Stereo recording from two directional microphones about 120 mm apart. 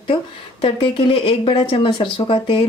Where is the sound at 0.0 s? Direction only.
45° left (ahead or behind).